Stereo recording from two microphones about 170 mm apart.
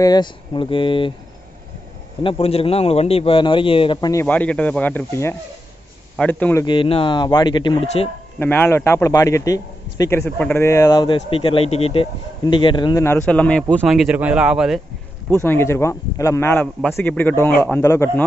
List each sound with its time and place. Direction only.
0.0 s speech: 25° left (ahead or behind)
2.2 s a man's voice: 35° left (ahead or behind); by 6.6 s 10° left (ahead or behind)
6.6 s a man's voice: 30° left (ahead or behind)
8.4 s a man's voice: 10° left (ahead or behind)
13.0 s a man's voice: 10° left (ahead or behind); by 14.8 s 5° right (ahead or behind)
15.3 s a man's voice: 15° left (ahead or behind)